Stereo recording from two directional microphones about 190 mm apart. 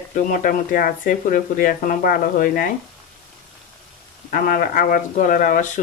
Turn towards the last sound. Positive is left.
turn(degrees=40)  # may be behind; listen again after turning